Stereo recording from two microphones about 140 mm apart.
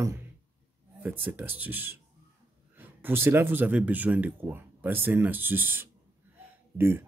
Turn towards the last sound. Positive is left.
turn(degrees=-15)  # may be behind; listen again after turning